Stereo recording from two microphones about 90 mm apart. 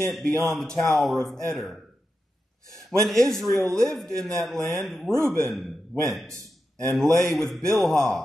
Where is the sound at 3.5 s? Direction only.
35° right (ahead or behind).